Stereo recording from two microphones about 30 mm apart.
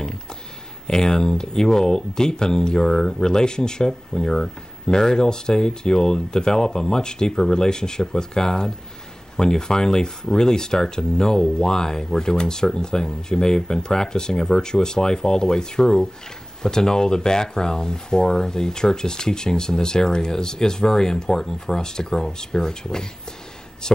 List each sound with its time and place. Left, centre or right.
0.8 s speech: left